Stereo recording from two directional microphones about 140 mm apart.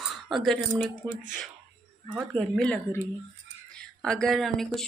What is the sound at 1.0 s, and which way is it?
Speech, 30° right (ahead or behind).